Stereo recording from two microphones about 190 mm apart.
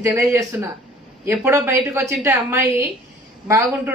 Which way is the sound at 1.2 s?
10° right (ahead or behind).